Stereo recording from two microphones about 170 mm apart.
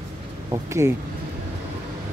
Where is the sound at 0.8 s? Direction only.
15° right (ahead or behind).